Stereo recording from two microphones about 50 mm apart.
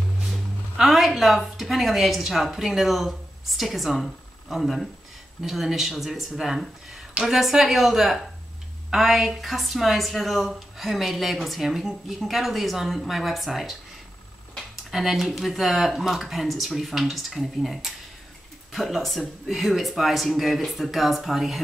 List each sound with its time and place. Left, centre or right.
0.2 s a woman's voice: centre
14.9 s a woman's voice: centre